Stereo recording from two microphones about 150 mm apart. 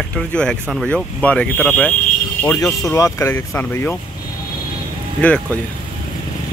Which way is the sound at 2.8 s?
20° left (ahead or behind).